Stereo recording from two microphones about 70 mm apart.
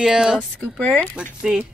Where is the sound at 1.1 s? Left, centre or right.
Centre.